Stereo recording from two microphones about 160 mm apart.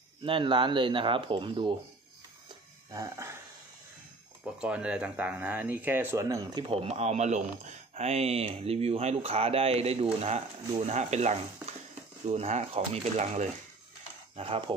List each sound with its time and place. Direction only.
0.2 s speech: 30° right (ahead or behind)
2.9 s speech: 20° right (ahead or behind)
4.6 s speech: 5° right (ahead or behind)
6.7 s speech: 40° right (ahead or behind)